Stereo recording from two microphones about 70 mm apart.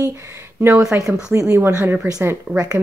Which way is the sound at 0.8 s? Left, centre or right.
Right.